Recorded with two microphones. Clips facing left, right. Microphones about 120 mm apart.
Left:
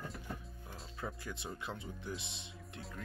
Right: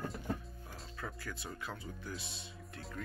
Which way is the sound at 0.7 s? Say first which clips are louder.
Left 2 dB; 20° left (ahead or behind).